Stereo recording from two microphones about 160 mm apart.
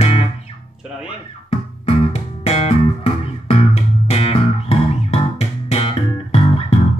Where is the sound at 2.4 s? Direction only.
40° left (ahead or behind).